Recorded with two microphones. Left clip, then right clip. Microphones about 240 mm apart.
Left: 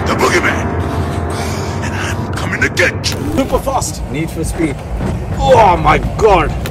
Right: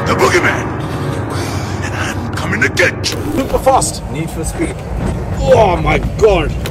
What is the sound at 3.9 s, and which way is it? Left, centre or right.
Speech, left.